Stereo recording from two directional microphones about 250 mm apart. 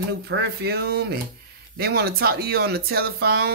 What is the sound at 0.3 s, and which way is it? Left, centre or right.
Speech, right.